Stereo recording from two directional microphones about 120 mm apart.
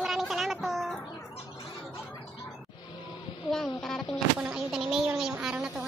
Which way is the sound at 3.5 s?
5° left (ahead or behind).